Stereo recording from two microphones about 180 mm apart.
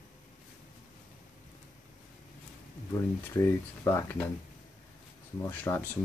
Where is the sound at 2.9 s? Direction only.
15° left (ahead or behind).